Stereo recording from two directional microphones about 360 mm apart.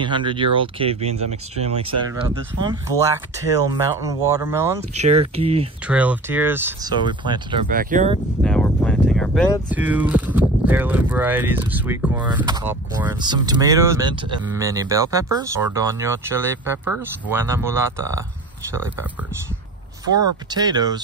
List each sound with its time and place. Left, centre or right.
0.0 s speech: centre
5.9 s speech: centre
8.5 s speech: centre
20.2 s speech: centre